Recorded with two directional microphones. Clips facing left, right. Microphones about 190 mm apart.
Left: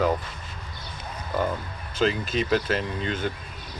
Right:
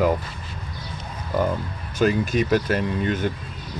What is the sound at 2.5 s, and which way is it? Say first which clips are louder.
Speech: right 2 dB; 50° right (ahead or behind).